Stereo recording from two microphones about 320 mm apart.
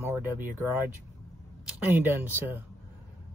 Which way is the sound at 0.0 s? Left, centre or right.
Centre.